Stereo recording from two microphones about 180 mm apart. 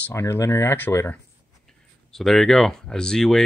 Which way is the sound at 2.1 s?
Centre (ahead or behind).